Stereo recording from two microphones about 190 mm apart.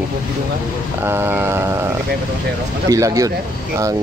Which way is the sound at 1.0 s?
10° right (ahead or behind).